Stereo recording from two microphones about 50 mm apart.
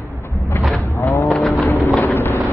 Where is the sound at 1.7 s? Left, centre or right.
Left.